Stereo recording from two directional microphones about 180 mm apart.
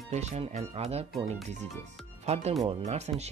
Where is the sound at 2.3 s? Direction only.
35° right (ahead or behind).